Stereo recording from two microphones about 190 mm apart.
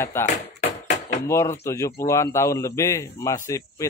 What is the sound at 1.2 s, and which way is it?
A man's voice, 15° left (ahead or behind).